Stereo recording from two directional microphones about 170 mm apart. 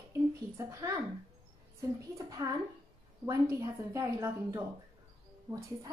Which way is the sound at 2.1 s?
20° right (ahead or behind).